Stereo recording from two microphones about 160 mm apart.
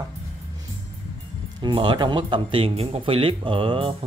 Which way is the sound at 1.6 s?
30° right (ahead or behind).